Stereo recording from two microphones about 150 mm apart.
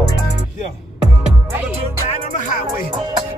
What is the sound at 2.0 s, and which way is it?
Music, 60° left (ahead or behind).